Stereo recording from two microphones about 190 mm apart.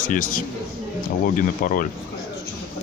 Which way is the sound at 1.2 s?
50° left (ahead or behind).